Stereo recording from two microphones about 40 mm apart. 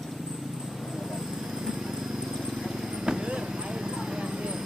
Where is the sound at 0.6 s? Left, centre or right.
Centre.